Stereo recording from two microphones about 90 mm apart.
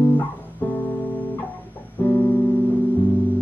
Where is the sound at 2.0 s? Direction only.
20° left (ahead or behind).